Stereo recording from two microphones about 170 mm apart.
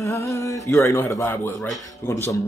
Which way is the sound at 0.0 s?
15° left (ahead or behind).